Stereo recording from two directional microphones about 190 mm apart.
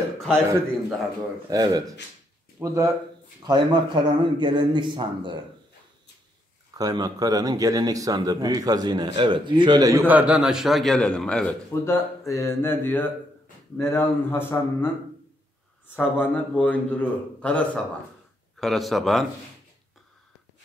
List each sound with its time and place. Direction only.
1.5 s speech: 20° right (ahead or behind)
6.8 s a man's voice: 20° right (ahead or behind); by 14.9 s 10° left (ahead or behind)
16.0 s a man's voice: 10° left (ahead or behind)